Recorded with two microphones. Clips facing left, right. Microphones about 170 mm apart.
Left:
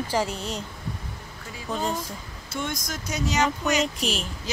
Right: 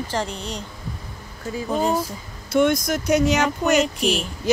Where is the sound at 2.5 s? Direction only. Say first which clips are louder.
Right 13 dB; 65° right (ahead or behind).